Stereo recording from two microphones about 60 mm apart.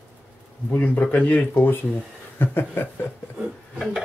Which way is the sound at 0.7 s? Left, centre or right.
Left.